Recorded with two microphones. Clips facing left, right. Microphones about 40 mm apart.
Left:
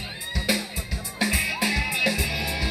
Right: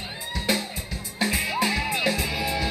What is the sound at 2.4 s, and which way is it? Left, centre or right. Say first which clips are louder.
Music: right 2 dB; centre.